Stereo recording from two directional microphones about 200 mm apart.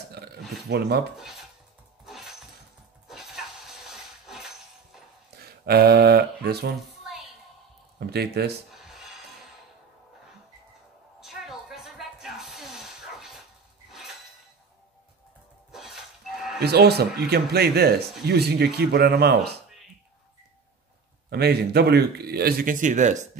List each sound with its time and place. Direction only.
0.4 s a sound: centre (ahead or behind)
0.7 s speech: 55° right (ahead or behind)
1.1 s speech: centre (ahead or behind)
2.0 s a sound: centre (ahead or behind)
5.7 s a man's voice: 55° right (ahead or behind)
8.1 s speech: 55° right (ahead or behind)
8.7 s music: centre (ahead or behind)
11.1 s music: centre (ahead or behind)
15.7 s a sound: centre (ahead or behind)
16.6 s a man's voice: 55° right (ahead or behind)
21.3 s a man's voice: 55° right (ahead or behind); by 23.1 s 40° right (ahead or behind)